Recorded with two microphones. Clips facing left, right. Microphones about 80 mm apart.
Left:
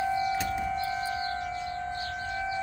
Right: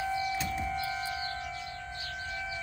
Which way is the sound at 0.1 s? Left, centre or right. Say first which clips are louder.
Left 4 dB; left.